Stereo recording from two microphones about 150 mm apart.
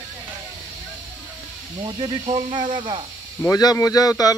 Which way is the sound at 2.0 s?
35° right (ahead or behind).